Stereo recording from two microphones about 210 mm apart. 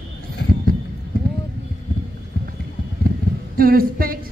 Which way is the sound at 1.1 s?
45° right (ahead or behind).